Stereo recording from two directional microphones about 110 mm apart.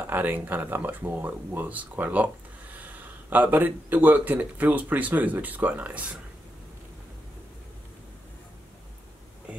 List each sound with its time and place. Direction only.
0.0 s speech: 15° right (ahead or behind)